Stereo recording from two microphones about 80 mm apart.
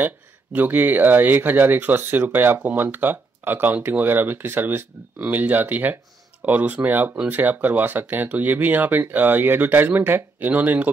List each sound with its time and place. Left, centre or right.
0.0 s speech: right